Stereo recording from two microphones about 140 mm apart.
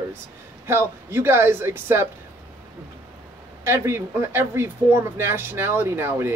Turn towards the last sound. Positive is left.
turn(degrees=-15)  # may be behind; listen again after turning